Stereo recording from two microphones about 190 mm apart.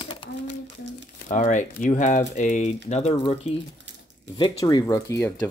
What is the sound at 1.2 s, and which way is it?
Speech, 40° left (ahead or behind).